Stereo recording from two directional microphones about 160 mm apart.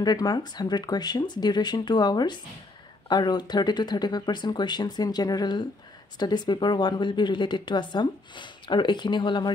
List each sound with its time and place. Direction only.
0.0 s speech: 25° left (ahead or behind)